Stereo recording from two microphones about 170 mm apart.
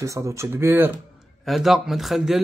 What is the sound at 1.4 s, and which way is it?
Speech, centre (ahead or behind).